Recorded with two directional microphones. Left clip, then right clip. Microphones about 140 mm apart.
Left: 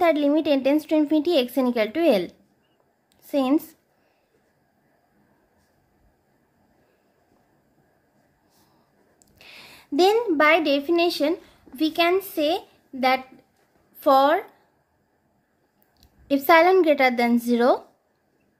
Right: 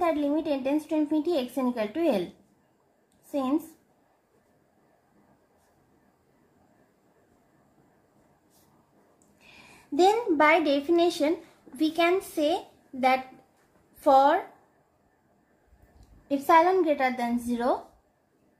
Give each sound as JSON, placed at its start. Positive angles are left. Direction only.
{"t": 0.0, "sound": "a woman's voice", "side_deg": 90}
{"t": 3.3, "sound": "a woman's voice", "side_deg": 85}
{"t": 9.9, "sound": "a woman's voice", "side_deg": 45}
{"t": 10.4, "sound": "a woman's voice", "side_deg": 30}
{"t": 16.3, "sound": "a woman's voice", "side_deg": 65}